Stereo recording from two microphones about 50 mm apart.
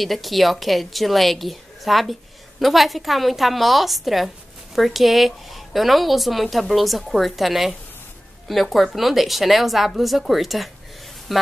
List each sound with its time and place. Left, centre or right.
0.0 s a woman's voice: centre